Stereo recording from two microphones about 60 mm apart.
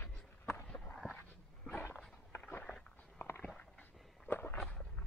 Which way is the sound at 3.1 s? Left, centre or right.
Left.